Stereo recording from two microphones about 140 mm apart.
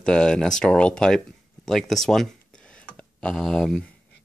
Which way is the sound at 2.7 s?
10° left (ahead or behind).